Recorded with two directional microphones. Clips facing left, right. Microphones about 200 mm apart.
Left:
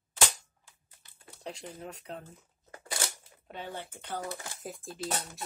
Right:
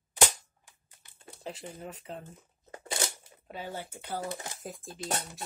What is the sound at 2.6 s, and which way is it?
Crunch, 25° right (ahead or behind).